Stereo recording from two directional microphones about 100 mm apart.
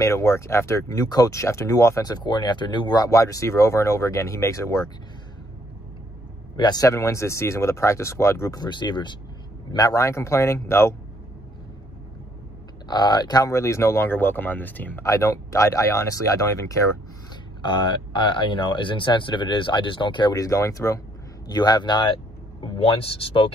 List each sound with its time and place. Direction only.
0.0 s speech: 30° left (ahead or behind)
6.5 s speech: 45° left (ahead or behind)
6.9 s speech: 30° left (ahead or behind)
8.5 s speech: 50° left (ahead or behind)
9.7 s speech: 40° left (ahead or behind)
12.8 s speech: 45° left (ahead or behind)
13.5 s speech: 30° left (ahead or behind)
15.0 s speech: 30° left (ahead or behind)
17.6 s speech: 55° left (ahead or behind)
20.3 s speech: 35° left (ahead or behind)
21.5 s speech: 45° left (ahead or behind)
22.6 s speech: 65° left (ahead or behind)